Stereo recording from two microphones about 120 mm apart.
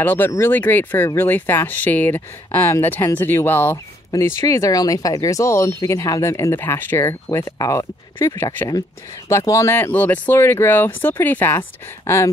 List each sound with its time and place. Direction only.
0.0 s speech: 15° left (ahead or behind)
9.3 s speech: 25° left (ahead or behind)